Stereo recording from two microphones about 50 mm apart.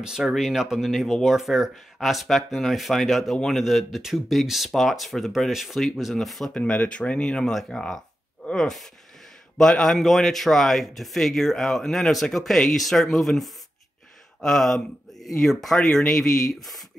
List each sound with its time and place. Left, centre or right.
0.0 s speech: centre
6.5 s speech: left
9.9 s speech: centre